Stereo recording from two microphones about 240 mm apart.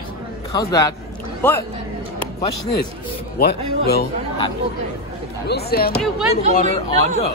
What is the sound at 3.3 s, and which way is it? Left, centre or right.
Speech, left.